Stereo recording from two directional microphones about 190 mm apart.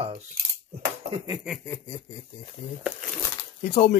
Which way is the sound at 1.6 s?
20° left (ahead or behind).